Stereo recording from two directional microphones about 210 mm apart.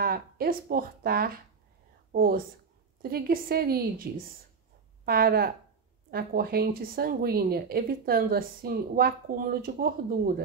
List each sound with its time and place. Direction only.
0.0 s speech: 45° right (ahead or behind)